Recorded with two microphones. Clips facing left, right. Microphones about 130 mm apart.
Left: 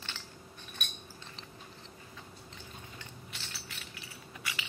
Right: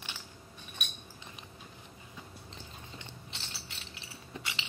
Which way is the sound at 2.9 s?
25° right (ahead or behind).